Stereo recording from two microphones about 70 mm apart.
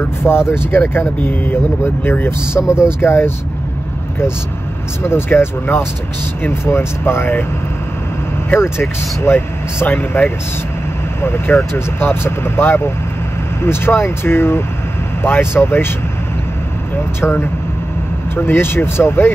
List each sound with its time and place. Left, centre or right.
0.5 s speech: left
5.0 s speech: left
8.5 s speech: left
17.2 s speech: left